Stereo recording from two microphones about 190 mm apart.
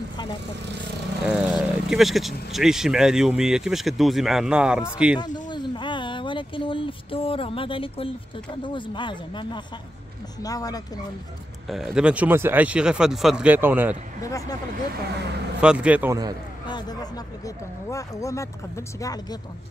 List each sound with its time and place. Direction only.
1.2 s speech: 5° right (ahead or behind)
5.5 s a sound: 25° left (ahead or behind)
8.6 s speech: 25° left (ahead or behind)
11.7 s speech: 5° right (ahead or behind)
14.2 s speech: 15° left (ahead or behind)
15.6 s speech: 5° right (ahead or behind)
16.6 s a sound: 25° left (ahead or behind)
17.8 s speech: 15° left (ahead or behind)